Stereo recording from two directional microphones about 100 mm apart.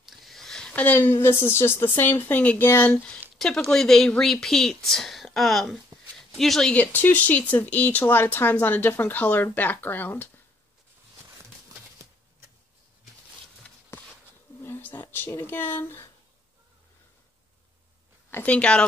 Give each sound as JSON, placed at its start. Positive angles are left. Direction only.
{"t": 0.1, "sound": "a woman's voice", "side_deg": 0}
{"t": 3.3, "sound": "speech", "side_deg": 5}
{"t": 6.1, "sound": "a sound", "side_deg": 5}
{"t": 6.7, "sound": "speech", "side_deg": 15}
{"t": 13.9, "sound": "a sound", "side_deg": 20}
{"t": 14.6, "sound": "speech", "side_deg": 20}
{"t": 18.3, "sound": "speech", "side_deg": 15}